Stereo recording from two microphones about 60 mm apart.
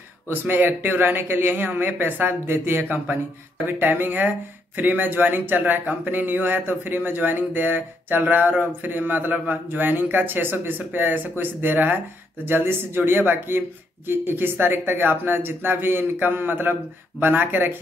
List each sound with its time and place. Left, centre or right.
0.3 s speech: right